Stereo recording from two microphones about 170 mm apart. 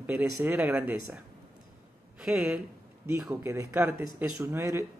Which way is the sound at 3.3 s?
20° right (ahead or behind).